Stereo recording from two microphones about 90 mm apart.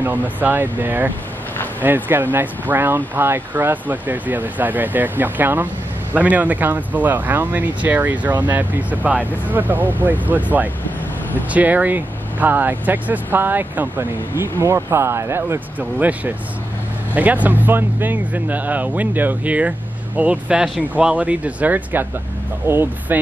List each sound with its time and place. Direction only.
0.0 s speech: 20° right (ahead or behind)
15.8 s speech: 15° right (ahead or behind)